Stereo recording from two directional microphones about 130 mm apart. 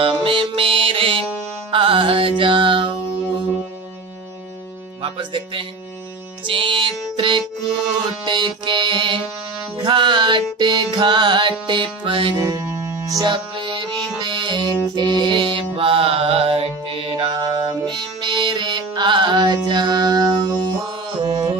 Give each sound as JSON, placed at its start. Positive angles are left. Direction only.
{"t": 0.0, "sound": "music", "side_deg": -40}
{"t": 5.0, "sound": "speech", "side_deg": -40}
{"t": 6.4, "sound": "music", "side_deg": -40}
{"t": 12.4, "sound": "music", "side_deg": -25}
{"t": 13.2, "sound": "music", "side_deg": -35}